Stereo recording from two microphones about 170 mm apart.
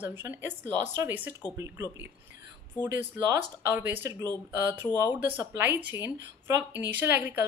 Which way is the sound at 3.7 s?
10° right (ahead or behind).